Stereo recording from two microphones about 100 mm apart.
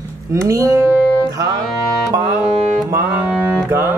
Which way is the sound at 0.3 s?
30° right (ahead or behind).